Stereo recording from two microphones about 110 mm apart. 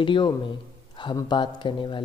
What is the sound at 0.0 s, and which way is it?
Speech, 50° left (ahead or behind).